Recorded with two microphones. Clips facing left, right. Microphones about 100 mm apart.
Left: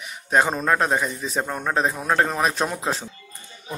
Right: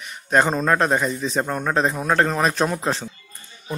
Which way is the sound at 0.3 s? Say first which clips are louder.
Right 2 dB; 5° left (ahead or behind).